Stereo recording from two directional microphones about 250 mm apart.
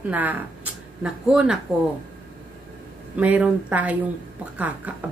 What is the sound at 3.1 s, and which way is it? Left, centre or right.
A woman's voice, centre.